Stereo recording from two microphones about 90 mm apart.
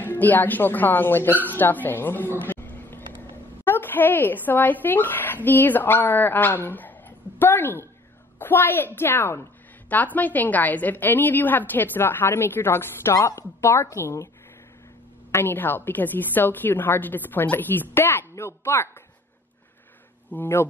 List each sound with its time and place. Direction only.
0.0 s a woman's voice: 20° left (ahead or behind)
15.3 s a woman's voice: 20° left (ahead or behind)
20.2 s speech: 20° left (ahead or behind)